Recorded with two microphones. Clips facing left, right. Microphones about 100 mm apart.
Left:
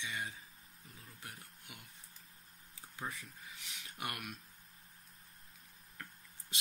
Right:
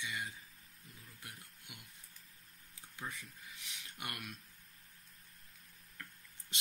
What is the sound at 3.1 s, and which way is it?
Speech, centre (ahead or behind).